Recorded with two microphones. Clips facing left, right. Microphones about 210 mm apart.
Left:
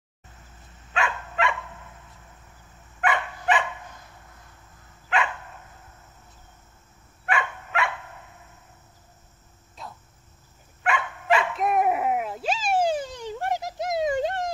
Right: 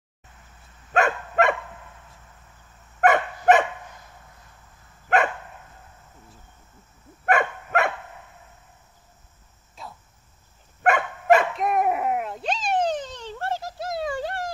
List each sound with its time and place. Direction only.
0.9 s dog: 45° right (ahead or behind)
3.0 s dog: 45° right (ahead or behind)
7.2 s dog: 45° right (ahead or behind)
9.8 s cricket: centre (ahead or behind)
10.8 s dog: 45° right (ahead or behind)
11.5 s a sound: centre (ahead or behind); by 14.5 s 20° left (ahead or behind)